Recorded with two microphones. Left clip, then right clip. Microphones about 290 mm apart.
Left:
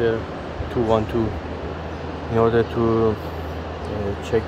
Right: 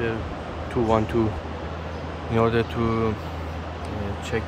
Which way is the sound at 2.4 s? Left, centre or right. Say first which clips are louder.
Left 4 dB; centre.